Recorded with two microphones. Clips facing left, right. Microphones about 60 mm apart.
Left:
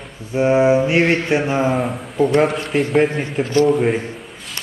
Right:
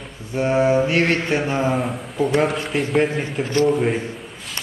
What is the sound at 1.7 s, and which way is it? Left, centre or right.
A man's voice, centre.